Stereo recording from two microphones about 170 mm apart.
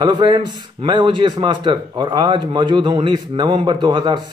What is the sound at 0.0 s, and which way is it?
A man's voice, 25° right (ahead or behind).